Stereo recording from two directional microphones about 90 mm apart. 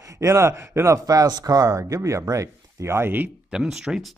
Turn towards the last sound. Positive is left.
turn(degrees=-5)  # may be behind; listen again after turning